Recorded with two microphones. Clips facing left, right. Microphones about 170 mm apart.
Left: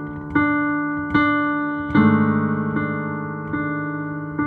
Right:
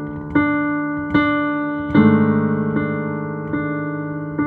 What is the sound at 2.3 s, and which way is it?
Music, 50° right (ahead or behind).